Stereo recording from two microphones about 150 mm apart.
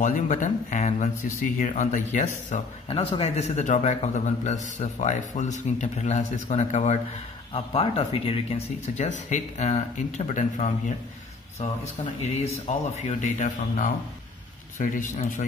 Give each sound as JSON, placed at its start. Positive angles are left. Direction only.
{"t": 0.0, "sound": "speech", "side_deg": 55}
{"t": 2.9, "sound": "a man's voice", "side_deg": 35}
{"t": 12.3, "sound": "a man's voice", "side_deg": 50}